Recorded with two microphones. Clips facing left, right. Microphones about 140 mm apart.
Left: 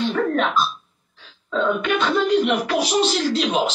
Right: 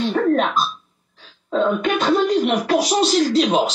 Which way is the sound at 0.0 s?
40° right (ahead or behind).